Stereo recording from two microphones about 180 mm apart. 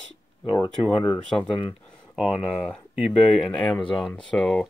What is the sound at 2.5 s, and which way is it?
Speech, centre (ahead or behind).